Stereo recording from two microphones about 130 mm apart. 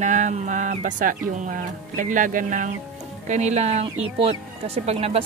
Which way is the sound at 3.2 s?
60° right (ahead or behind).